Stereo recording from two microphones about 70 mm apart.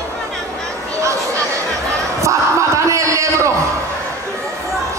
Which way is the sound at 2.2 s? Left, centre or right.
Right.